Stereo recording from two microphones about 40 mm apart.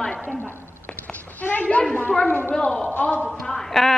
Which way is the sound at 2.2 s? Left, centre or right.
Left.